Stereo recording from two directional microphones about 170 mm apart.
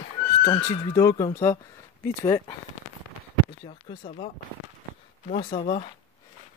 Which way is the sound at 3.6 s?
30° left (ahead or behind).